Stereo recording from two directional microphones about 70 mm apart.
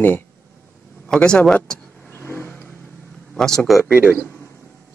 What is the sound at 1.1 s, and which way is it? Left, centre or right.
Speech, centre.